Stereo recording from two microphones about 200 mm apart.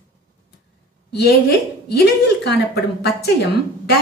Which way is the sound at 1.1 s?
55° left (ahead or behind).